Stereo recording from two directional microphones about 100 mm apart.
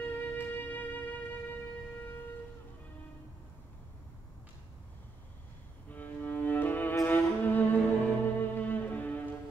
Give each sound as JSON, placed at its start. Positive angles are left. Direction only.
{"t": 0.0, "sound": "music", "side_deg": 15}
{"t": 5.9, "sound": "music", "side_deg": 20}